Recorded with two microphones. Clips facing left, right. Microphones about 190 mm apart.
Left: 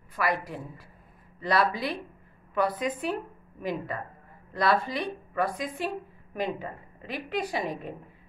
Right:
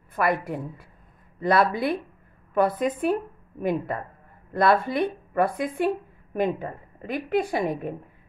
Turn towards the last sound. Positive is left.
turn(degrees=-50)  # may be behind; listen again after turning